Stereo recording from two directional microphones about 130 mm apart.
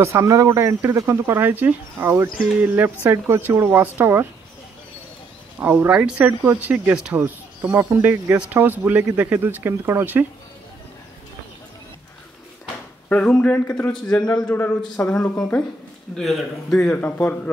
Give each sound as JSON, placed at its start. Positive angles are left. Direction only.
{"t": 0.0, "sound": "speech", "side_deg": -25}
{"t": 5.6, "sound": "speech", "side_deg": -15}
{"t": 13.1, "sound": "a man's voice", "side_deg": 10}
{"t": 16.2, "sound": "a man's voice", "side_deg": 0}